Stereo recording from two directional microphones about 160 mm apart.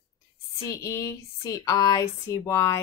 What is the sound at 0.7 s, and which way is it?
Speech, 20° left (ahead or behind).